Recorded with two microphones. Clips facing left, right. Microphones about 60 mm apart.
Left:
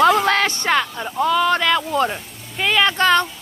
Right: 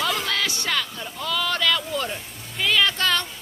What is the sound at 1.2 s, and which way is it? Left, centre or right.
Speech, left.